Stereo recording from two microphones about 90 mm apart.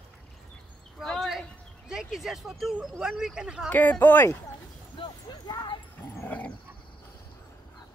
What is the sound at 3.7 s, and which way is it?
Speech, 20° left (ahead or behind).